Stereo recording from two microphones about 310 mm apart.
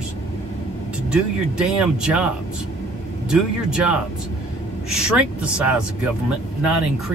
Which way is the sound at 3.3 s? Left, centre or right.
Centre.